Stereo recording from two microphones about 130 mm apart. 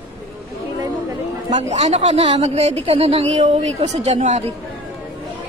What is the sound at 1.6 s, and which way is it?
A woman's voice, 65° right (ahead or behind).